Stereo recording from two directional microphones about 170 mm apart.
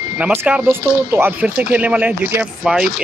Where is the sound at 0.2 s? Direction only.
10° right (ahead or behind).